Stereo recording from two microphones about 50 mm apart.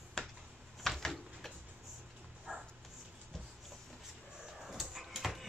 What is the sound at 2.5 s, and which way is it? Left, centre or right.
Dog, right.